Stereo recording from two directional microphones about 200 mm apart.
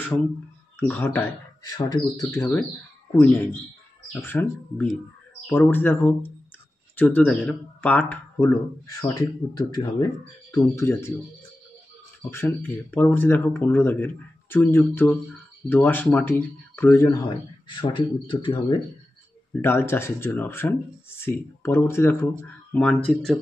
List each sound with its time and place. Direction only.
0.7 s speech: 10° left (ahead or behind)
4.1 s speech: 10° left (ahead or behind)
12.2 s speech: 10° left (ahead or behind)
19.5 s speech: 10° left (ahead or behind)